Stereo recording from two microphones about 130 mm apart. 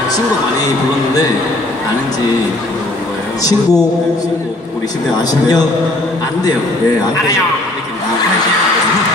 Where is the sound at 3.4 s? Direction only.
30° left (ahead or behind).